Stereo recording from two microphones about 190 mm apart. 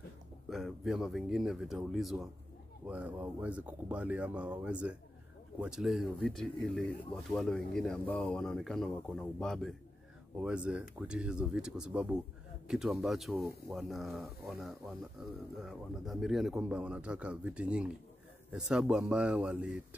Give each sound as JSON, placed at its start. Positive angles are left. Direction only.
{"t": 0.5, "sound": "speech", "side_deg": 0}